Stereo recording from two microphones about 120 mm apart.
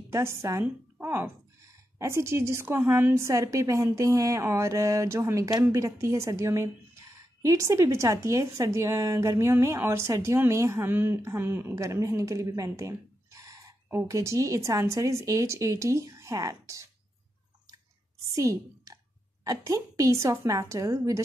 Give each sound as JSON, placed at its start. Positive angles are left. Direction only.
{"t": 0.1, "sound": "a woman's voice", "side_deg": -20}
{"t": 18.3, "sound": "a sound", "side_deg": -25}
{"t": 19.4, "sound": "a woman's voice", "side_deg": -30}